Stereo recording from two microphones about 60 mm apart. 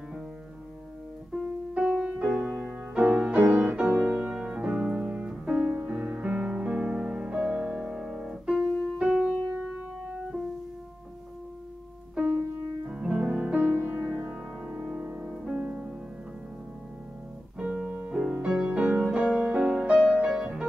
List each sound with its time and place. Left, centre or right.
1.7 s music: centre
3.4 s music: right
3.7 s piano: centre
5.5 s music: right; by 9.8 s centre
9.8 s keyboard: right
12.8 s piano: centre
13.6 s music: right
14.0 s music: right
17.6 s piano: centre
18.1 s music: centre